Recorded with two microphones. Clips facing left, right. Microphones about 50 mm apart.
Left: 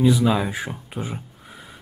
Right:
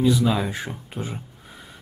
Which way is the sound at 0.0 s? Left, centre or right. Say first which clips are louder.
Left 2 dB; centre.